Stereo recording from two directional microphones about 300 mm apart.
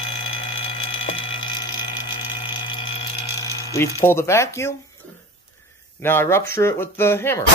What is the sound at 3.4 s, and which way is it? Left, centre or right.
Speech, centre.